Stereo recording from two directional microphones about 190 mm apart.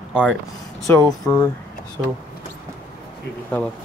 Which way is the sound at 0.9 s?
10° left (ahead or behind).